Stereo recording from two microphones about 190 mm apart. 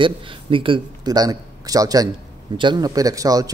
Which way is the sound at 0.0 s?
25° right (ahead or behind).